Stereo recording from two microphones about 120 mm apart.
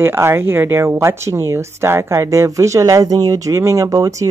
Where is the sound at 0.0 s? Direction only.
20° right (ahead or behind).